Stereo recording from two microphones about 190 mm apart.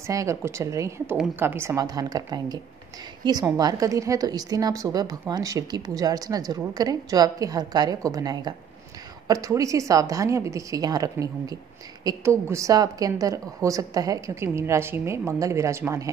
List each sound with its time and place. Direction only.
0.0 s a woman's voice: 15° right (ahead or behind)